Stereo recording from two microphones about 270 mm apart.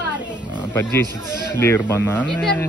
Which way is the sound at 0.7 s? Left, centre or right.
Centre.